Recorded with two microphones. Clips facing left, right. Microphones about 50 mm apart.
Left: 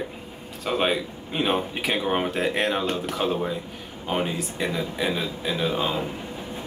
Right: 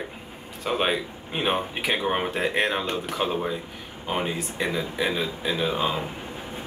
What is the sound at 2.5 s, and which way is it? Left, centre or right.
Speech, centre.